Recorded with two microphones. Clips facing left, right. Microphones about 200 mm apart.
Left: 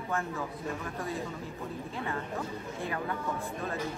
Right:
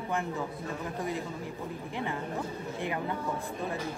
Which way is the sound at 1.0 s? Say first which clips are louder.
Right 4 dB; 15° right (ahead or behind).